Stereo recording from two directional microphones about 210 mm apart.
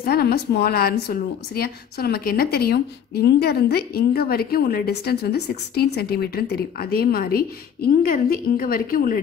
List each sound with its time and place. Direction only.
0.0 s a woman's voice: 45° left (ahead or behind)